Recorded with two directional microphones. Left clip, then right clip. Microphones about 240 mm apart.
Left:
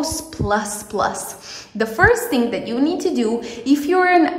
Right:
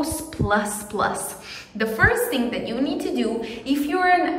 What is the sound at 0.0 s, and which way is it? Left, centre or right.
A woman's voice, centre.